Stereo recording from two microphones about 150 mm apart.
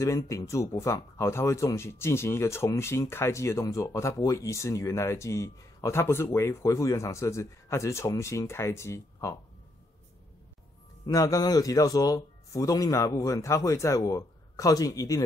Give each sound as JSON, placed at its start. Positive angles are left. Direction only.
{"t": 0.0, "sound": "speech", "side_deg": 20}
{"t": 11.1, "sound": "speech", "side_deg": 25}